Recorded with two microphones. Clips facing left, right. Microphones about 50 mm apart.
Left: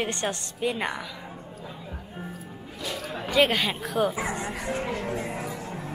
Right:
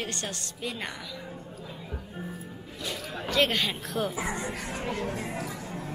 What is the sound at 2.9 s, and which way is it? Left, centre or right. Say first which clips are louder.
Speech: left 2 dB; centre.